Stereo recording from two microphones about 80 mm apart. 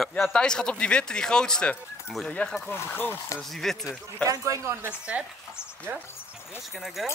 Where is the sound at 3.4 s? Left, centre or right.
Centre.